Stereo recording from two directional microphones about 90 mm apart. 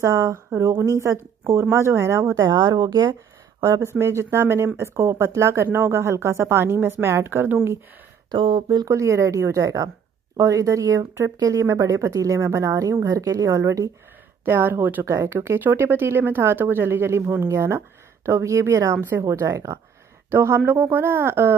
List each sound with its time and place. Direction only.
0.0 s a woman's voice: 35° right (ahead or behind)
2.4 s speech: 45° right (ahead or behind)
3.6 s a woman's voice: 35° right (ahead or behind)
8.3 s speech: 70° right (ahead or behind)
8.8 s a woman's voice: 35° right (ahead or behind)